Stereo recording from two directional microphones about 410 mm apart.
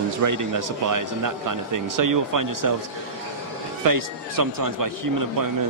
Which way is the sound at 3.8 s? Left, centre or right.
Right.